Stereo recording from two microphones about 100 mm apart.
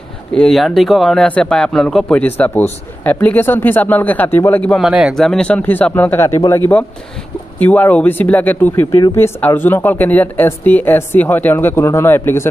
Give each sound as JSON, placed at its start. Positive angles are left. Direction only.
{"t": 0.3, "sound": "speech", "side_deg": 5}
{"t": 4.7, "sound": "speech", "side_deg": -5}
{"t": 5.6, "sound": "speech", "side_deg": 20}
{"t": 7.5, "sound": "speech", "side_deg": 15}